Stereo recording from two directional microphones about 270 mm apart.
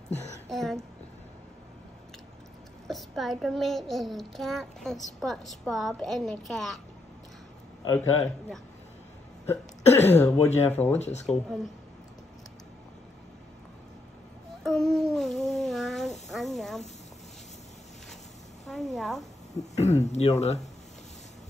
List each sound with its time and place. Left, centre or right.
0.5 s a sound: centre
2.9 s a child's voice: centre
7.8 s a child's voice: centre
14.6 s a sound: centre
18.7 s a child's voice: centre
19.5 s speech: left